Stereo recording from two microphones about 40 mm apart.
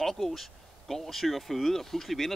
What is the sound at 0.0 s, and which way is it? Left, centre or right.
A man's voice, centre.